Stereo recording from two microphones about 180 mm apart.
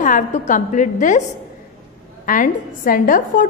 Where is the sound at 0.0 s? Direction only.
45° left (ahead or behind).